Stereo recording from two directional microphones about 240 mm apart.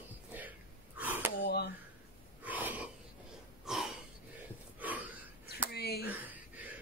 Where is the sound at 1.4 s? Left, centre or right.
Left.